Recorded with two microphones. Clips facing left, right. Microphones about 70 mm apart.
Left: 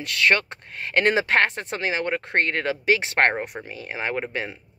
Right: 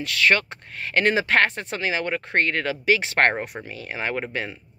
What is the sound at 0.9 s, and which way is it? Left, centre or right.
Speech, left.